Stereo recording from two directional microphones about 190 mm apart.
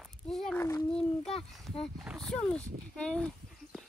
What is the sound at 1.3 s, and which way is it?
Speech, 30° left (ahead or behind).